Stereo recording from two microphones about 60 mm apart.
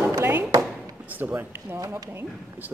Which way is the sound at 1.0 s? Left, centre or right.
Right.